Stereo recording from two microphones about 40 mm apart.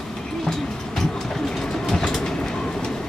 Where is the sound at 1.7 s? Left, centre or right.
Centre.